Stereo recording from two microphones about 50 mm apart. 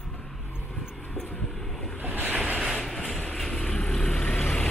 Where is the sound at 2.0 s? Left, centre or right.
Right.